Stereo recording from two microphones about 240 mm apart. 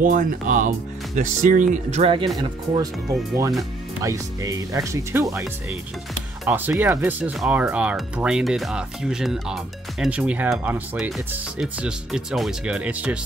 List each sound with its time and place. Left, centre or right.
0.0 s speech: right; by 2.9 s centre
4.0 s speech: centre